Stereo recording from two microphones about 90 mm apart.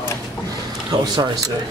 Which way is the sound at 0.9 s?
50° right (ahead or behind).